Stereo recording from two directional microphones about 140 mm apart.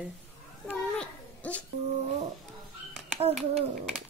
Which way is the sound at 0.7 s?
10° left (ahead or behind).